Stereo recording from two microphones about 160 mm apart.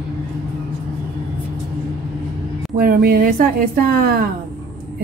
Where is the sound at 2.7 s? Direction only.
65° right (ahead or behind).